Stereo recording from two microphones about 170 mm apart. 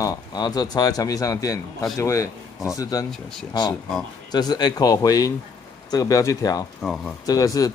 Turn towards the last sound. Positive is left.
turn(degrees=20)  # may be behind; listen again after turning